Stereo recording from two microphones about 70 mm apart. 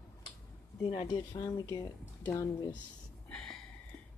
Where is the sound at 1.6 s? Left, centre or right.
Left.